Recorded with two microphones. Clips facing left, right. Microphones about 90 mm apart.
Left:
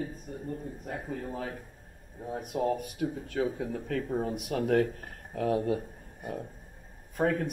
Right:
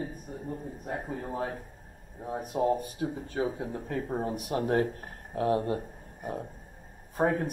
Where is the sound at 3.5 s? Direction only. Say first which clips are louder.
Left 1 dB; 20° right (ahead or behind).